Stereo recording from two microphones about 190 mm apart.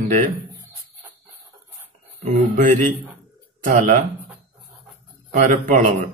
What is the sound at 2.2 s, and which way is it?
A man's voice, 40° right (ahead or behind).